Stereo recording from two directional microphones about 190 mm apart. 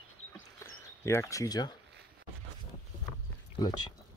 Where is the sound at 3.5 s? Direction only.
20° left (ahead or behind).